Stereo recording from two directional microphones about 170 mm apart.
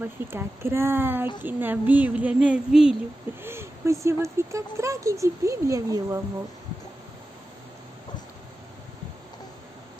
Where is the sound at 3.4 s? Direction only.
15° right (ahead or behind).